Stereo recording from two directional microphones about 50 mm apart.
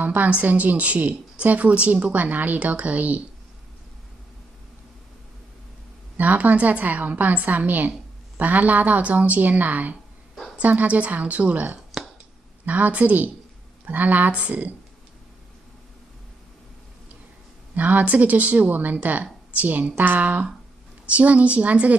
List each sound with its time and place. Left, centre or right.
0.0 s a woman's voice: right
6.1 s a woman's voice: right
17.7 s a woman's voice: right